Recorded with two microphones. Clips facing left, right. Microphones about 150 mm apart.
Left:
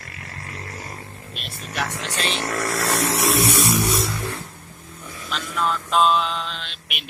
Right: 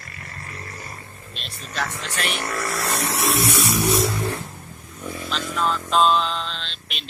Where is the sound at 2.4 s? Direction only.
85° left.